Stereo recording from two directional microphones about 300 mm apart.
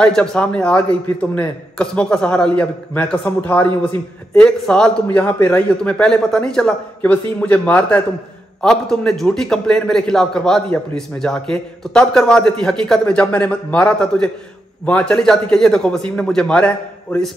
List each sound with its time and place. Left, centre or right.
0.0 s a man's voice: centre
4.4 s a man's voice: centre